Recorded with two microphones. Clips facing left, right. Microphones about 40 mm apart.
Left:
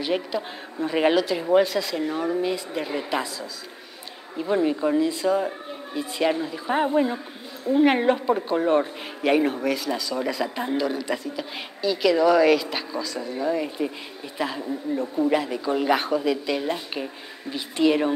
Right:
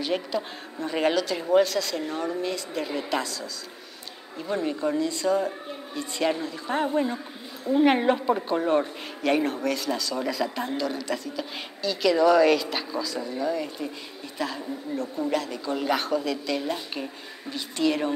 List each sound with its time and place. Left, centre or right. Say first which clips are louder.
0.0 s a woman's voice: left 2 dB; centre